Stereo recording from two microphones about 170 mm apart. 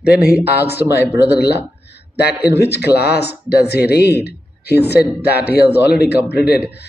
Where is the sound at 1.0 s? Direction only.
15° right (ahead or behind).